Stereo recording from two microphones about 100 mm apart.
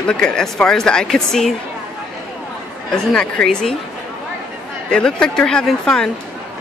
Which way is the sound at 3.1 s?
5° left (ahead or behind).